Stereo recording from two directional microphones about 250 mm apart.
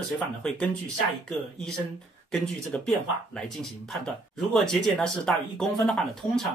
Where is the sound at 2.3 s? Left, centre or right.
Centre.